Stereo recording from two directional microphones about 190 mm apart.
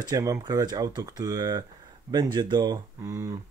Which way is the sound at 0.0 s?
20° right (ahead or behind).